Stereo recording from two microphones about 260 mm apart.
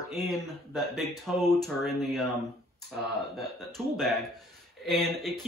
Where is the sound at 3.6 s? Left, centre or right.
Centre.